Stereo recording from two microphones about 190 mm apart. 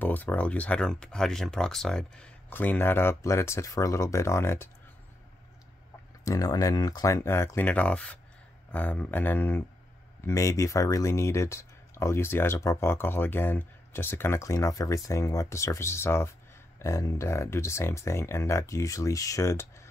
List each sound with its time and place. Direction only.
0.0 s speech: 10° left (ahead or behind)
6.2 s speech: 20° left (ahead or behind)